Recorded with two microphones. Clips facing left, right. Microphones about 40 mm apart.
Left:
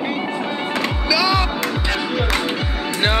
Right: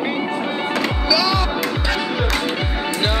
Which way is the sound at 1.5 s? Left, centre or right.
Centre.